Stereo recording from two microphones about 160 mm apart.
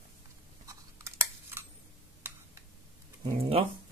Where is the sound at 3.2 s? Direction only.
35° right (ahead or behind).